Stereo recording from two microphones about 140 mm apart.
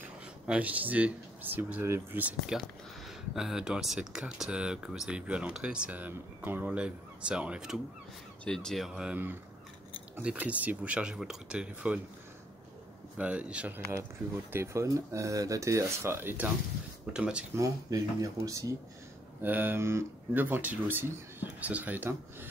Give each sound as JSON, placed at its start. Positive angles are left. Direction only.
{"t": 0.5, "sound": "speech", "side_deg": -10}
{"t": 13.2, "sound": "speech", "side_deg": -10}
{"t": 17.6, "sound": "speech", "side_deg": -25}